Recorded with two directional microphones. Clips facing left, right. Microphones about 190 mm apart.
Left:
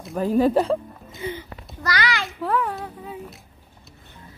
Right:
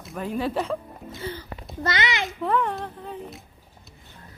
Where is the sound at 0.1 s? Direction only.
35° left (ahead or behind).